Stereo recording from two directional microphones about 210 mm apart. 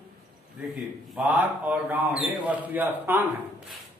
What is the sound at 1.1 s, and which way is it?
A man's voice, 5° right (ahead or behind).